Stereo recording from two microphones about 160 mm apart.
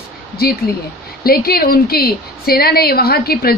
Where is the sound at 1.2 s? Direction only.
70° left (ahead or behind).